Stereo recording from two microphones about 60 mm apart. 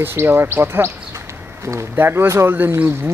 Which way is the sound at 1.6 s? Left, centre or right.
Right.